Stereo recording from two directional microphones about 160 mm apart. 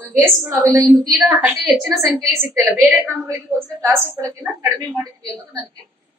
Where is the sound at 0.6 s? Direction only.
20° right (ahead or behind).